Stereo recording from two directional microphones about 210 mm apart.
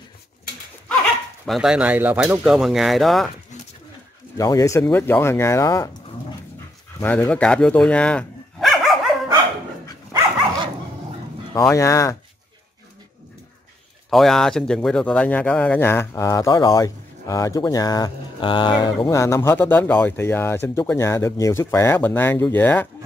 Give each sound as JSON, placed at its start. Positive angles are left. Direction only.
{"t": 1.4, "sound": "speech", "side_deg": 0}
{"t": 3.5, "sound": "a sound", "side_deg": 35}
{"t": 4.4, "sound": "speech", "side_deg": 15}
{"t": 7.0, "sound": "speech", "side_deg": 10}
{"t": 11.5, "sound": "speech", "side_deg": 15}
{"t": 14.1, "sound": "speech", "side_deg": 0}